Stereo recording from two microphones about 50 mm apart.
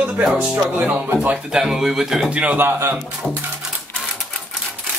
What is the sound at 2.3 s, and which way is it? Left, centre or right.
Speech, right.